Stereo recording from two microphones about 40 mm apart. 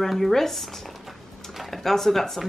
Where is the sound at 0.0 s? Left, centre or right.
Centre.